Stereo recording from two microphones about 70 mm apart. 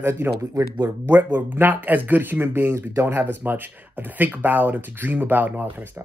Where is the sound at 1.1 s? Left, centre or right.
Right.